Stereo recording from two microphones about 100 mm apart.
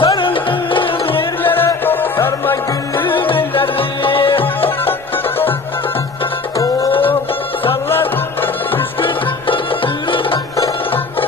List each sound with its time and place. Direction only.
0.0 s music: 60° left (ahead or behind)
1.4 s music: 20° left (ahead or behind)
3.2 s music: 60° left (ahead or behind)
7.9 s music: 20° left (ahead or behind)